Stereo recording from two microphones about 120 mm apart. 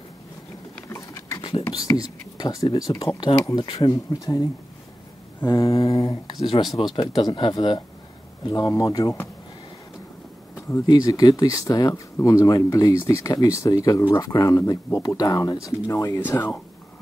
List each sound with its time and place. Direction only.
0.8 s patter: 25° left (ahead or behind)
1.7 s speech: 30° left (ahead or behind)
3.9 s speech: 30° left (ahead or behind)
5.5 s mantra: 45° left (ahead or behind)
6.4 s speech: 40° left (ahead or behind)
10.9 s speech: 30° left (ahead or behind)
16.3 s speech: 15° left (ahead or behind)